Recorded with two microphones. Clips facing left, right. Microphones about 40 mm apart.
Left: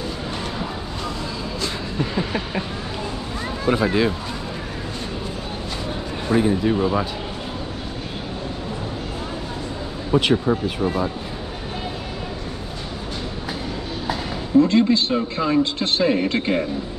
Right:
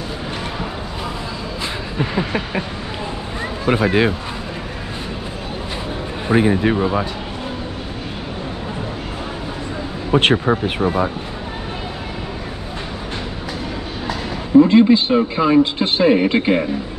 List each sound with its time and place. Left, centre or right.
1.6 s a sound: right
3.6 s speech: right
6.2 s speech: right
6.8 s speech: centre
10.1 s speech: right
14.6 s speech: centre